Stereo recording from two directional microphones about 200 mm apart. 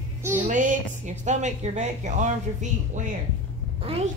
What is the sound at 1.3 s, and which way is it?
Speech, 35° right (ahead or behind).